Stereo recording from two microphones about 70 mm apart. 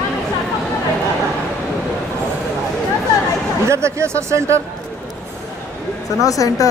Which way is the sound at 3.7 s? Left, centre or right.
Right.